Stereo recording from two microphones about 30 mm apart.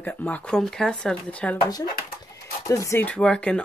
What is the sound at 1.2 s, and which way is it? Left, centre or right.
Speech, left.